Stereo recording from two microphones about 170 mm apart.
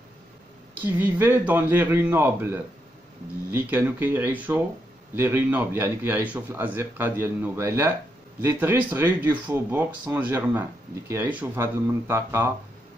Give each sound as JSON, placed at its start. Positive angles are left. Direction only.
{"t": 0.7, "sound": "speech", "side_deg": -10}